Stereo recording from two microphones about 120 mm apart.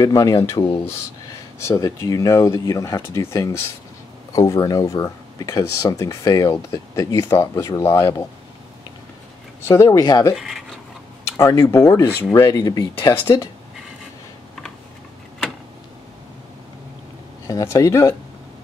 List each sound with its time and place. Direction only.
0.0 s speech: 30° left (ahead or behind)
1.6 s speech: 25° left (ahead or behind)
9.7 s speech: 30° left (ahead or behind)
10.3 s speech: 5° right (ahead or behind)
11.3 s speech: 25° left (ahead or behind)
17.5 s speech: 30° left (ahead or behind)